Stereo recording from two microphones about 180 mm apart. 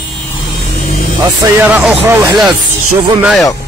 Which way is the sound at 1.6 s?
Centre (ahead or behind).